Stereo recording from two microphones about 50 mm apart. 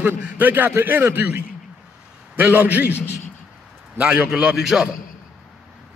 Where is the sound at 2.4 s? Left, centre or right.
Right.